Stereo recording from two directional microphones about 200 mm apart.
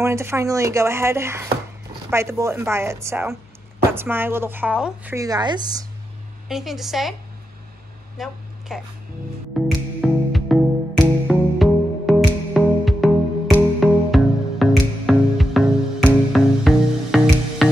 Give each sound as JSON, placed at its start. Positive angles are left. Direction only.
{"t": 0.0, "sound": "speech", "side_deg": -15}
{"t": 5.1, "sound": "a woman's voice", "side_deg": -20}
{"t": 6.5, "sound": "a woman's voice", "side_deg": 0}
{"t": 8.2, "sound": "a sound", "side_deg": 0}
{"t": 9.6, "sound": "music", "side_deg": 0}